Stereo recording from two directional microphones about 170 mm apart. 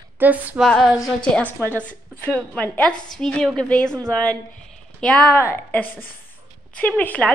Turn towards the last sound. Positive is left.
turn(degrees=10)  # may be behind; listen again after turning